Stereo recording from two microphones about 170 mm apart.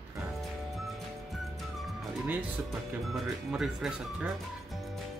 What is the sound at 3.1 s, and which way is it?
Speech, centre (ahead or behind).